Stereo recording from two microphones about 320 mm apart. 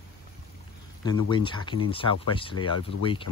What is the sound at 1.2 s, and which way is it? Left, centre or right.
Speech, centre.